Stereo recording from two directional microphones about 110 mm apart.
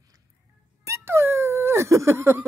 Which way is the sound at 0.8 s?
25° right (ahead or behind).